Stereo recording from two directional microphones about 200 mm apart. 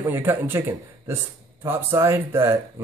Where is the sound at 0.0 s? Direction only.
10° right (ahead or behind).